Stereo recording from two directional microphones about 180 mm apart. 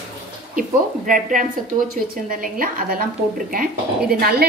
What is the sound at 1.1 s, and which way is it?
A woman's voice, 45° right (ahead or behind).